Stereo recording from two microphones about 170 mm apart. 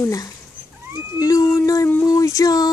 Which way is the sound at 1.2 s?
20° left (ahead or behind).